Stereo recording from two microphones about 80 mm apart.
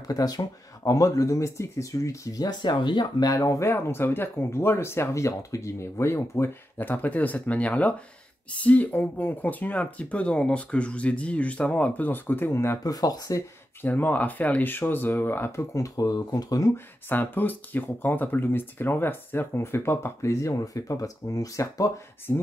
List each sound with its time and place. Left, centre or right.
0.0 s speech: left
2.6 s speech: left
3.3 s speech: left
12.8 s speech: left
13.8 s speech: centre
15.7 s speech: left
16.7 s speech: left
22.3 s speech: left